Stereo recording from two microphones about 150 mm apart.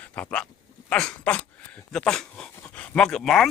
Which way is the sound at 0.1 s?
10° left (ahead or behind).